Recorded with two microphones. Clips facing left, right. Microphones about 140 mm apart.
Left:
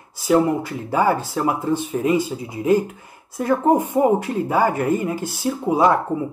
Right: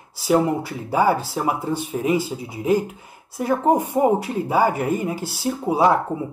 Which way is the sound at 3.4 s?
20° right (ahead or behind).